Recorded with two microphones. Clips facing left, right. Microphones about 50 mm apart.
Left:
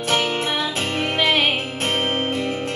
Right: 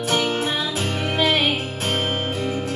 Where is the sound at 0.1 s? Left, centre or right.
Left.